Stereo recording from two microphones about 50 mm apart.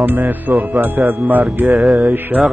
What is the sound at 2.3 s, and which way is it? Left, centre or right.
Music, right.